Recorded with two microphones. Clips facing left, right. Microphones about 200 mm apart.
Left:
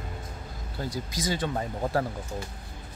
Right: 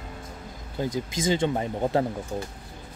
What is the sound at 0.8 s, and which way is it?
Speech, 25° right (ahead or behind).